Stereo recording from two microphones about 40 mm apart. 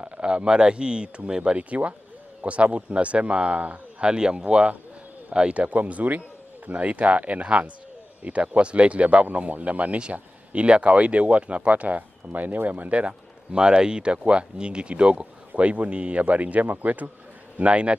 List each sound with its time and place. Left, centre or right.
0.2 s speech: right
1.6 s a man's voice: right
4.0 s a man's voice: right
12.2 s a man's voice: right
13.5 s a man's voice: right
17.6 s a man's voice: right